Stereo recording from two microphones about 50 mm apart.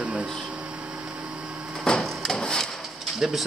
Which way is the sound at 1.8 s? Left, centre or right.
Centre.